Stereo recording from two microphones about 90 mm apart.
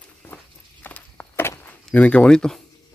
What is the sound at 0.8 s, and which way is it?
Walk, 20° left (ahead or behind).